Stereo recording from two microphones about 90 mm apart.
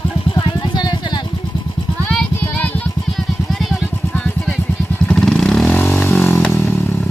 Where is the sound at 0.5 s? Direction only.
55° left (ahead or behind).